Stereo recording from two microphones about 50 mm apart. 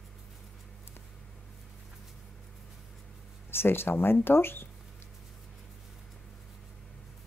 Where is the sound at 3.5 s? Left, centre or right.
Left.